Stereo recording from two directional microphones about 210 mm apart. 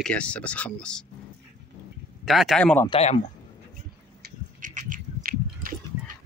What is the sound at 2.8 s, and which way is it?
Speech, 30° left (ahead or behind).